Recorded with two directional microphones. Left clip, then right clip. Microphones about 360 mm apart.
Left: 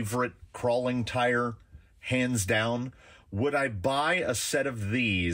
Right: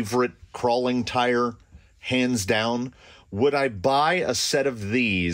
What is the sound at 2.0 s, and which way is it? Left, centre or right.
Speech, right.